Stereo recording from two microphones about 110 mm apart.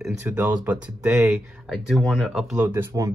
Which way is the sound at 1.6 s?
Centre (ahead or behind).